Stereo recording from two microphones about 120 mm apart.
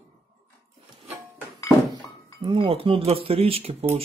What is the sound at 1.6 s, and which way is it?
Thunk, 30° left (ahead or behind).